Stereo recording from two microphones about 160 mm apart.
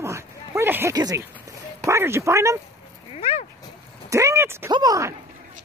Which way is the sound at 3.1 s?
40° left (ahead or behind).